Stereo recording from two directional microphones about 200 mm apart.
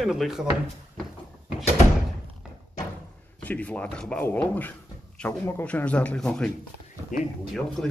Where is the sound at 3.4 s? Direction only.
5° left (ahead or behind).